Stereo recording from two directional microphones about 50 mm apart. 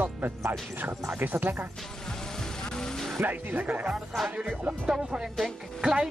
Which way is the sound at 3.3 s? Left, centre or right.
Right.